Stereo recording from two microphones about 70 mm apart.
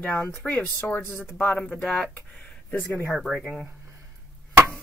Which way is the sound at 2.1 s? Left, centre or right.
Left.